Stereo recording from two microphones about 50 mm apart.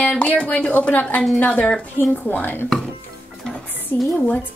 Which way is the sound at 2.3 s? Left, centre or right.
Left.